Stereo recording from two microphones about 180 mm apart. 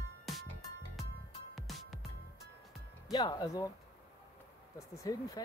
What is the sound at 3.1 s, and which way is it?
Speech, 25° left (ahead or behind).